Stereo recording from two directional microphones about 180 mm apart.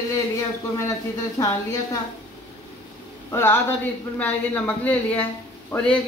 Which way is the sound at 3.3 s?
10° left (ahead or behind).